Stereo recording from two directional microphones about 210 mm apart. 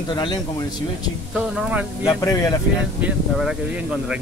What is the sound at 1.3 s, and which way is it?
Speech, 5° right (ahead or behind).